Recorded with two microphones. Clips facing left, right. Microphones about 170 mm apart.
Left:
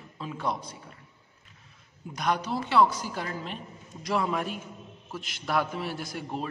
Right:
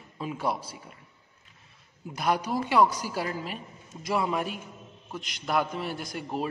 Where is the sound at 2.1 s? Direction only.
5° right (ahead or behind).